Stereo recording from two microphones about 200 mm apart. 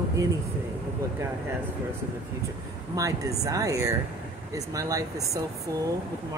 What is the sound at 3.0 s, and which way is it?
Speech, 15° right (ahead or behind).